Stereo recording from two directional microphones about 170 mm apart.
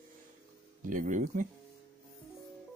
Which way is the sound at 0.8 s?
50° right (ahead or behind).